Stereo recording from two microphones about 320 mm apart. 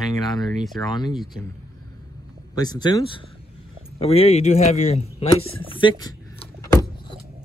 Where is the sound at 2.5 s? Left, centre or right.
Centre.